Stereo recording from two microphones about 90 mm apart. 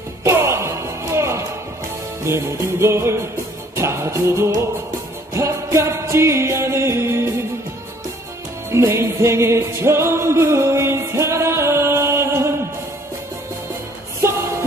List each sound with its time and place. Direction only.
0.2 s music: 30° right (ahead or behind)
8.7 s music: 30° right (ahead or behind)